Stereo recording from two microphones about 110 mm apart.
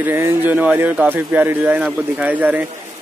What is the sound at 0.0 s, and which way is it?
Speech, 20° right (ahead or behind).